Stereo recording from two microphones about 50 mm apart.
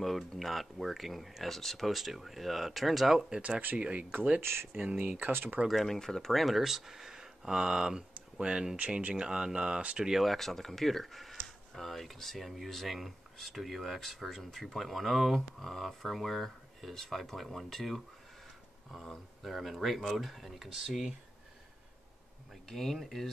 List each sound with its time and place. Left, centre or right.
0.3 s speech: centre
3.3 s speech: centre
4.4 s speech: right
4.9 s speech: right
5.7 s speech: centre
6.4 s speech: centre; by 10.0 s right
10.0 s speech: centre
10.3 s speech: centre
19.5 s speech: centre
22.7 s speech: centre